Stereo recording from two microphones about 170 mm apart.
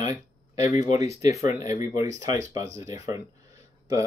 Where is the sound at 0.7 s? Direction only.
45° left (ahead or behind).